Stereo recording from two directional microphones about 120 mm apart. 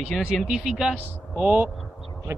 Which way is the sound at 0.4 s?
5° right (ahead or behind).